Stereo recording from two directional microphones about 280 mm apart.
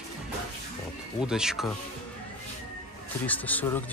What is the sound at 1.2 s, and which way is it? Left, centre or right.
Speech, centre.